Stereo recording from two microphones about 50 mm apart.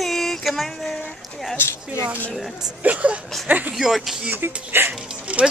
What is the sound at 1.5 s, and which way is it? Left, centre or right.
Speech, left.